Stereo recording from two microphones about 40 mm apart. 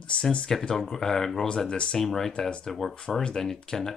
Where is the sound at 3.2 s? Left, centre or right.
Centre.